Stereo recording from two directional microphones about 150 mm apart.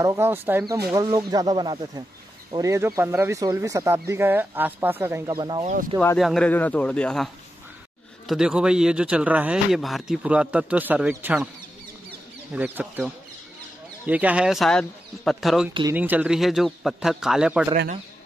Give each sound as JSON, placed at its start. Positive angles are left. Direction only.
{"t": 0.0, "sound": "speech", "side_deg": -20}
{"t": 0.9, "sound": "speech", "side_deg": -25}
{"t": 5.3, "sound": "speech", "side_deg": -30}
{"t": 6.1, "sound": "speech", "side_deg": 0}
{"t": 8.3, "sound": "speech", "side_deg": -5}
{"t": 12.5, "sound": "speech", "side_deg": -10}
{"t": 14.0, "sound": "speech", "side_deg": -10}
{"t": 15.9, "sound": "speech", "side_deg": -10}